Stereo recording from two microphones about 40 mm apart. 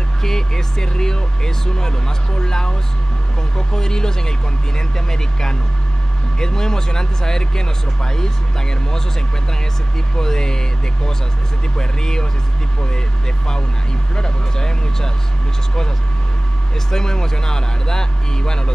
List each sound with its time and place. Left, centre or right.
0.2 s speech: centre
10.1 s speech: centre
11.7 s speech: centre
14.1 s speech: centre
16.9 s speech: centre